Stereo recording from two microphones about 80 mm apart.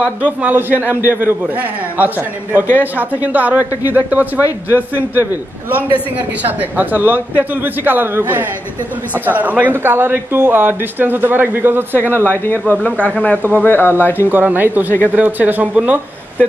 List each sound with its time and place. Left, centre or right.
0.2 s a man's voice: right
12.3 s speech: left
14.1 s a man's voice: right